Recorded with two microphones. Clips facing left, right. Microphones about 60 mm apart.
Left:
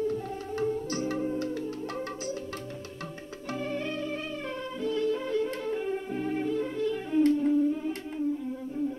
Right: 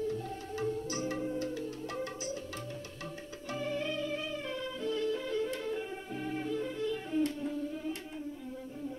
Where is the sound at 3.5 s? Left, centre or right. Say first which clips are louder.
Left 3 dB; left.